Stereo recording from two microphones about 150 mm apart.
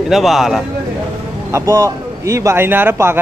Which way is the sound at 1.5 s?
20° right (ahead or behind).